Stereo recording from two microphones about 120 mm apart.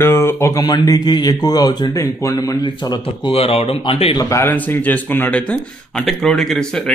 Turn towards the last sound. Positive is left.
turn(degrees=5)  # may be behind; listen again after turning